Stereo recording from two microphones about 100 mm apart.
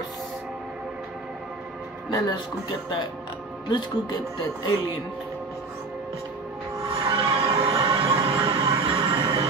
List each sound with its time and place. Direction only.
2.1 s speech: 40° left (ahead or behind)
3.6 s speech: 50° left (ahead or behind)
6.8 s music: 55° right (ahead or behind)